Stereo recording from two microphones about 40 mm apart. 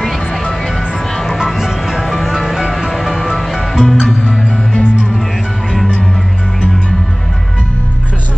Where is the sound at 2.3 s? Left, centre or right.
Centre.